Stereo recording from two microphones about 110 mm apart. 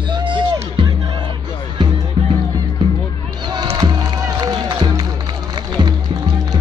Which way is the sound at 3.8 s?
40° right (ahead or behind).